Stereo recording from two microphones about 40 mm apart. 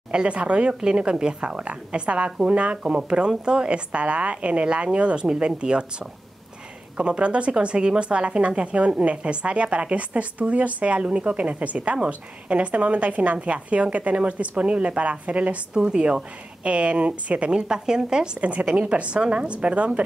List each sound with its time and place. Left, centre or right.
0.1 s a woman's voice: right
7.0 s a woman's voice: right
17.5 s a woman's voice: centre
18.4 s a woman's voice: right